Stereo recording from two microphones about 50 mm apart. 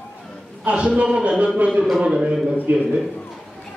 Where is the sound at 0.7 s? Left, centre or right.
Right.